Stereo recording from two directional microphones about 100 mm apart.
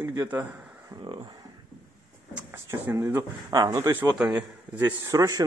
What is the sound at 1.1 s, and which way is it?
Speech, 50° right (ahead or behind).